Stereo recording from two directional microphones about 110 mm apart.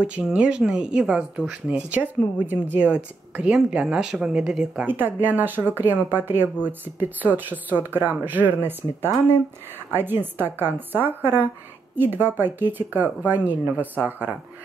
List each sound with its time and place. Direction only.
0.0 s speech: 10° right (ahead or behind)
4.8 s a woman's voice: 15° right (ahead or behind)